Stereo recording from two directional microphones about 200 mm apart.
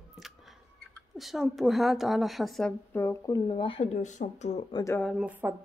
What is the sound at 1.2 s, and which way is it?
A woman's voice, centre (ahead or behind).